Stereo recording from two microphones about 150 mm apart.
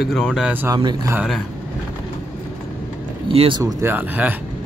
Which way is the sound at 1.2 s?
Centre (ahead or behind).